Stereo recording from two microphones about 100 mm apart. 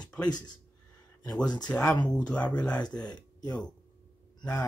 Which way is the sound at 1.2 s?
40° left (ahead or behind).